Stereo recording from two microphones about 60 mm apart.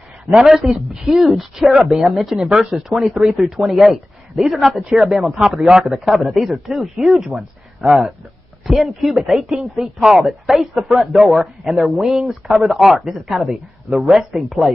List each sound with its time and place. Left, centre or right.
0.3 s speech: centre
8.6 s speech: centre